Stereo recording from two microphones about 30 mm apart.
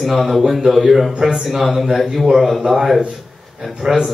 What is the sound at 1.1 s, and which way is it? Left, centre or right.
Speech, right.